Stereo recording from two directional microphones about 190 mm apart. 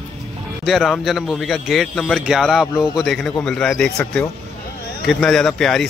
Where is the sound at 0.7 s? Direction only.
Centre (ahead or behind).